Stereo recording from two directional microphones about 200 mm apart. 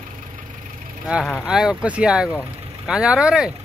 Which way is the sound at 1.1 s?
Centre (ahead or behind).